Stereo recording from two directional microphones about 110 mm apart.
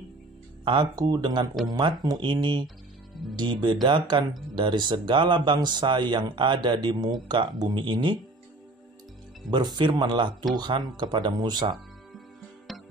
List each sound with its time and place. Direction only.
0.7 s speech: 40° right (ahead or behind)
3.8 s speech: 40° right (ahead or behind)
9.5 s speech: 40° right (ahead or behind)
12.7 s music: centre (ahead or behind)